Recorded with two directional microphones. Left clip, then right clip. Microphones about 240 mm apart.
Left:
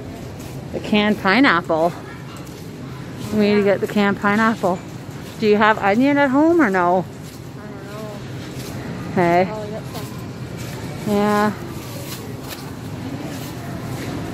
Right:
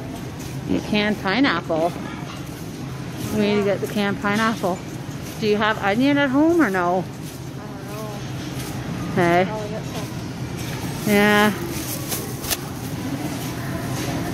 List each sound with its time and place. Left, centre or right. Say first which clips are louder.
0.8 s speech: left 6 dB; left
3.3 s speech: left 4 dB; left
9.1 s a woman's voice: left 2 dB; centre
11.1 s speech: right 2 dB; centre